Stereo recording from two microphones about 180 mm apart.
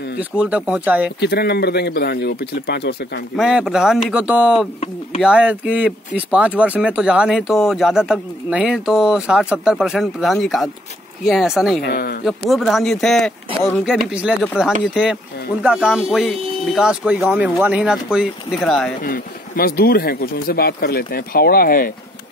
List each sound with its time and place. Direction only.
0.2 s speech: 5° right (ahead or behind)
1.2 s speech: 65° left (ahead or behind)
3.3 s speech: 5° right (ahead or behind)
11.8 s speech: 60° left (ahead or behind)
12.3 s speech: centre (ahead or behind)
19.0 s speech: 55° left (ahead or behind)